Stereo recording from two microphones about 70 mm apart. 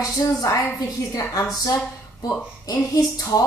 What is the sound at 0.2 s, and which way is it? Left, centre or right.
A woman's voice, left.